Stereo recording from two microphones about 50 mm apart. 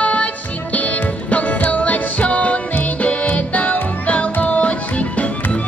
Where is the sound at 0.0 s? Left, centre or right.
Left.